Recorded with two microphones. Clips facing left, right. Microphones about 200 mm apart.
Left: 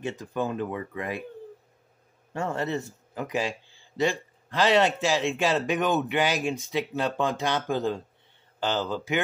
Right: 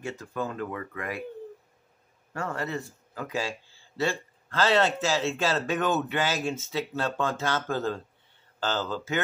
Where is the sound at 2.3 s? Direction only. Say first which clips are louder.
Left 3 dB; 25° left (ahead or behind).